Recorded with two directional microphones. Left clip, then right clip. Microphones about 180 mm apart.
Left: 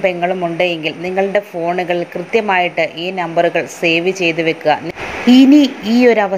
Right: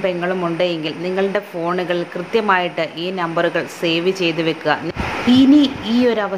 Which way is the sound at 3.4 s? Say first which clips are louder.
Left 4 dB; 40° right (ahead or behind).